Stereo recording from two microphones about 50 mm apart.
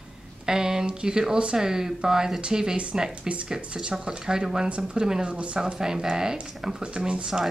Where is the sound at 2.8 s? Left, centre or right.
Right.